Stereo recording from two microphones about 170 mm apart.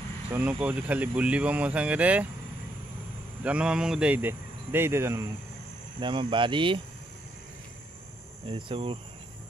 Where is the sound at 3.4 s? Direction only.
5° right (ahead or behind).